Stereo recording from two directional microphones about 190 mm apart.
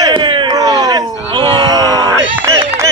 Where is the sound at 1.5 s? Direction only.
20° right (ahead or behind).